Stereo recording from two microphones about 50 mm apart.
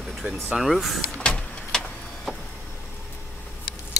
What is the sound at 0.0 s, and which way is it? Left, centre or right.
Vehicle, centre.